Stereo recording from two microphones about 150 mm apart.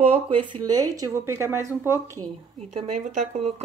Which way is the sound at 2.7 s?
50° right (ahead or behind).